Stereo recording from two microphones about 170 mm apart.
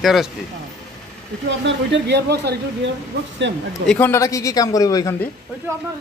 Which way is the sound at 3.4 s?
90° right.